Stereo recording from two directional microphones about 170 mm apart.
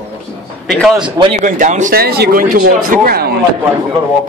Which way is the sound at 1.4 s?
50° right (ahead or behind).